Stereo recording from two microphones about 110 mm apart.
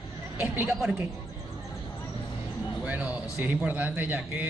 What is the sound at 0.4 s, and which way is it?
Speech, 15° right (ahead or behind).